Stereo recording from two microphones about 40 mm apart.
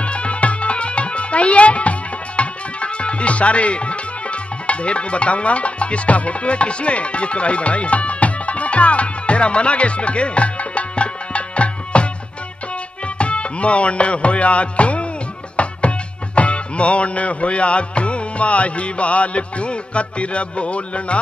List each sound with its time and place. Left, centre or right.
0.0 s music: left